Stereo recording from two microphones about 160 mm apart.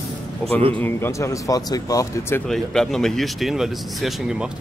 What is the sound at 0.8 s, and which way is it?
Speech, 15° left (ahead or behind).